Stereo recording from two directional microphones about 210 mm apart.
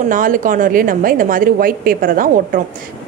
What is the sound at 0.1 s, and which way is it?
A woman's voice, 40° right (ahead or behind).